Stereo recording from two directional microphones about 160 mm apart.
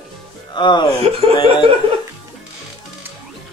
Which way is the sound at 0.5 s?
30° left (ahead or behind).